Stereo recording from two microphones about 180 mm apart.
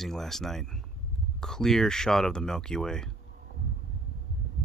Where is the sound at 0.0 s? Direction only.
Centre (ahead or behind).